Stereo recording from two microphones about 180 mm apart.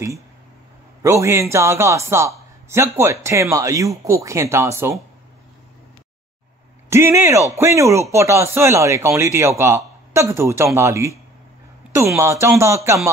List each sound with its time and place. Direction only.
1.0 s a man's voice: 15° right (ahead or behind)
6.9 s a man's voice: 15° right (ahead or behind)
12.2 s a man's voice: 15° right (ahead or behind)